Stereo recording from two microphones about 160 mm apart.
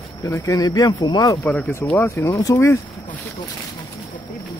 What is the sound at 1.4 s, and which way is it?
Speech, 10° left (ahead or behind).